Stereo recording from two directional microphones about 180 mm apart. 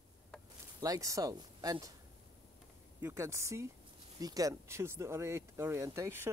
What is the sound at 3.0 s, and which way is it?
Speech, 15° right (ahead or behind).